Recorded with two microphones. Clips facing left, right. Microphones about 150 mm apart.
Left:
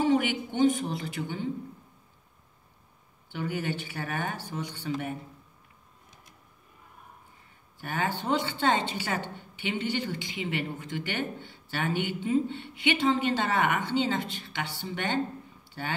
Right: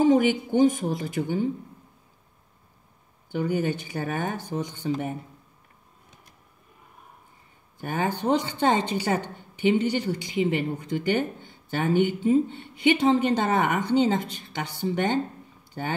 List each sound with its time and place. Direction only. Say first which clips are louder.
0.0 s a woman's voice: right 6 dB; 40° right (ahead or behind)
3.3 s speech: right 6 dB; 40° right (ahead or behind)
7.8 s a woman's voice: right 5 dB; 45° right (ahead or behind)